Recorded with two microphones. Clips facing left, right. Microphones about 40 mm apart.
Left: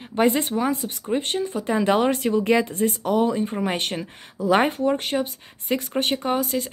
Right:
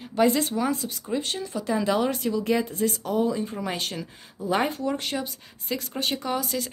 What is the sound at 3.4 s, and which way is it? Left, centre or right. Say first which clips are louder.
A woman's voice: left 5 dB; left.